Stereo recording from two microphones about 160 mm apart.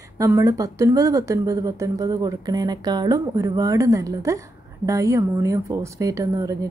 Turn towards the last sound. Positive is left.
turn(degrees=-20)  # may be behind; listen again after turning